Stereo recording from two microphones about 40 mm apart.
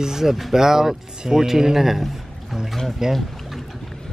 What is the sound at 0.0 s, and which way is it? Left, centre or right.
Speech, centre.